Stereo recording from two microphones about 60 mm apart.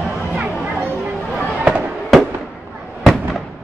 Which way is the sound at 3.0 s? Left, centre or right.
Centre.